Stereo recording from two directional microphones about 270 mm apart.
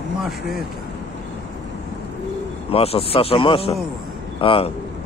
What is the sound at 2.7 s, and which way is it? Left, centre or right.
Speech, left.